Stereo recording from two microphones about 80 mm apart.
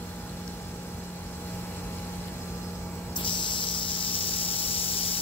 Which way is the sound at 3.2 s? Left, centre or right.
Left.